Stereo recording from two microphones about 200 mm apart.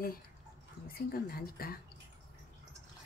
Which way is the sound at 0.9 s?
50° left (ahead or behind).